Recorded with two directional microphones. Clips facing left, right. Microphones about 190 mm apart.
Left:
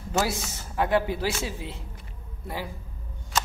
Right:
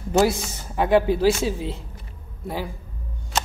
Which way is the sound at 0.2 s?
20° right (ahead or behind).